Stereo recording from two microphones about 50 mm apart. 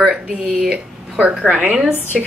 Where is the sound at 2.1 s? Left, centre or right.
Centre.